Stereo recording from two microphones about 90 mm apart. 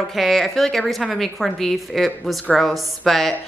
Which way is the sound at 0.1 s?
Centre (ahead or behind).